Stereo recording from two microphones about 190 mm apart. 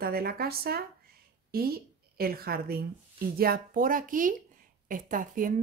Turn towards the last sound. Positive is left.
turn(degrees=-45)  # may be behind; listen again after turning